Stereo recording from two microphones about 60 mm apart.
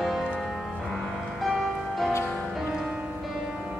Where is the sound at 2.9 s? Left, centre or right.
Centre.